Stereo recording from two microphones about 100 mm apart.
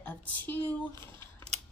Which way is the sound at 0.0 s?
20° left (ahead or behind).